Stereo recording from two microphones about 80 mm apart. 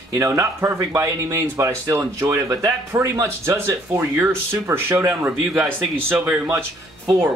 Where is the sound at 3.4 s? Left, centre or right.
Right.